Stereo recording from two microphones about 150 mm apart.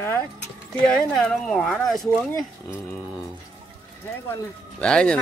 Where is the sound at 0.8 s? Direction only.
5° left (ahead or behind).